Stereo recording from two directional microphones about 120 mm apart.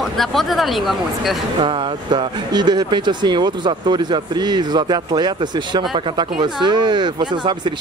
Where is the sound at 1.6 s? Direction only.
40° right (ahead or behind).